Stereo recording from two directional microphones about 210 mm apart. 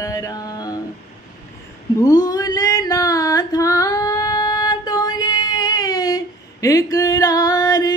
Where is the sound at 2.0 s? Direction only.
15° left (ahead or behind).